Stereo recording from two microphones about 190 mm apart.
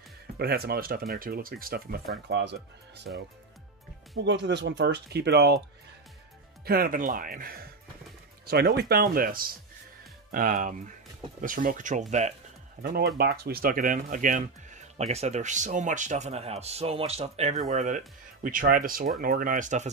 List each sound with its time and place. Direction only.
0.4 s speech: 55° right (ahead or behind)
2.2 s speech: 65° right (ahead or behind)
6.6 s speech: 50° right (ahead or behind)
12.8 s speech: 55° right (ahead or behind)